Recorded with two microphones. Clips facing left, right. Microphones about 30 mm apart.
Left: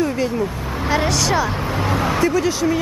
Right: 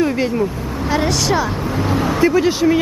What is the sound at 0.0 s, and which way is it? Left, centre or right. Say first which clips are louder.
Speech: right 3 dB; right.